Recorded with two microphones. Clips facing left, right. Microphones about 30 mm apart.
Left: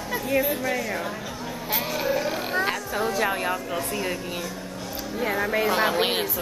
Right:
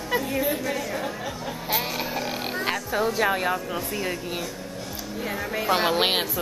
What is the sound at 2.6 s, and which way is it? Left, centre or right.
A woman's voice, centre.